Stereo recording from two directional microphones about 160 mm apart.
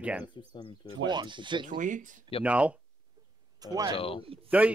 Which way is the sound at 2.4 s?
10° right (ahead or behind).